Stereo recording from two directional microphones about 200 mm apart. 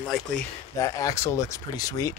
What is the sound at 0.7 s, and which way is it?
Speech, 15° left (ahead or behind).